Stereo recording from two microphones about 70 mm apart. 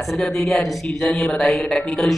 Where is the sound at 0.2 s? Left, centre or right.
Centre.